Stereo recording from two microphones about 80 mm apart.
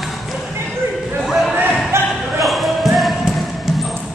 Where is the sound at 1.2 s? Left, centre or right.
Centre.